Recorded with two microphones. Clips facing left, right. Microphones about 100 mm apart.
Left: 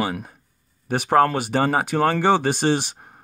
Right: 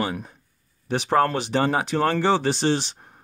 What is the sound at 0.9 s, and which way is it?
Speech, 50° left (ahead or behind).